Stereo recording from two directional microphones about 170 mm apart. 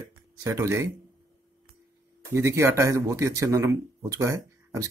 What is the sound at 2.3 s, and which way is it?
Speech, 15° right (ahead or behind).